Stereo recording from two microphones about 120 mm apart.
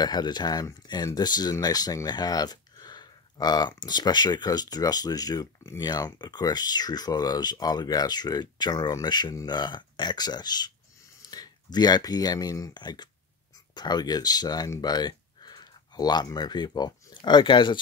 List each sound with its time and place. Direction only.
0.0 s speech: 35° left (ahead or behind)